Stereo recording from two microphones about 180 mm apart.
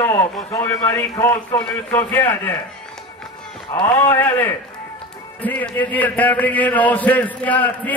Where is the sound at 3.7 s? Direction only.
10° left (ahead or behind).